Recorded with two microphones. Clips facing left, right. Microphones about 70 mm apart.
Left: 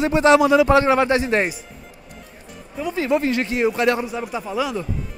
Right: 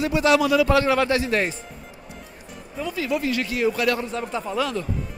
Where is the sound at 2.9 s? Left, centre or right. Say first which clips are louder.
Left 5 dB; left.